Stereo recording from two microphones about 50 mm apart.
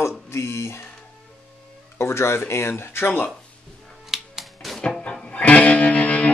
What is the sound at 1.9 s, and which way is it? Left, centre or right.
Speech, left.